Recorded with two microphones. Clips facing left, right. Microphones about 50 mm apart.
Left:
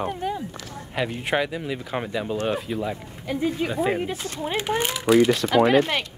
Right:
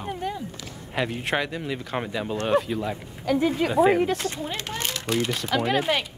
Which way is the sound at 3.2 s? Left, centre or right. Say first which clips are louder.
Right 3 dB; right.